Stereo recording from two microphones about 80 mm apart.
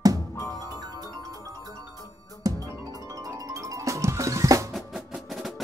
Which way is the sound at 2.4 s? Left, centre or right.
Right.